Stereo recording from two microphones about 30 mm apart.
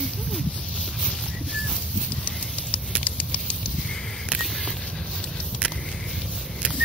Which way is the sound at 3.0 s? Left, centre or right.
Left.